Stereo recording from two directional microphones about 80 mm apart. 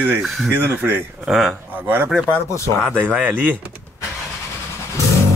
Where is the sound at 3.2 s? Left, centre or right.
Right.